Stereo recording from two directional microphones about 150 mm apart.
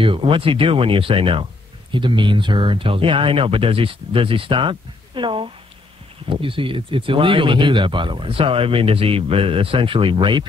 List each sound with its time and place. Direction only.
0.0 s speech: 35° right (ahead or behind)